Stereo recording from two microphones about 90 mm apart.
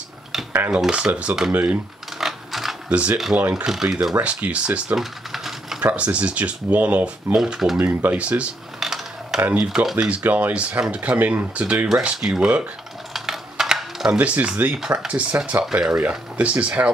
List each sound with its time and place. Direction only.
0.7 s speech: 10° right (ahead or behind)
2.1 s a sound: 5° right (ahead or behind)
2.9 s speech: 15° right (ahead or behind)
3.6 s speech: 5° right (ahead or behind)
5.8 s speech: 15° right (ahead or behind)
7.3 s speech: 5° right (ahead or behind)
7.8 s camera: 20° right (ahead or behind); by 9.4 s 5° right (ahead or behind)
9.4 s speech: 15° right (ahead or behind)
9.7 s speech: 5° right (ahead or behind)
13.1 s coin: 5° right (ahead or behind)
14.1 s speech: 15° right (ahead or behind)